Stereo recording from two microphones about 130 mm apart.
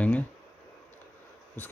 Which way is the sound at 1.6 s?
15° left (ahead or behind).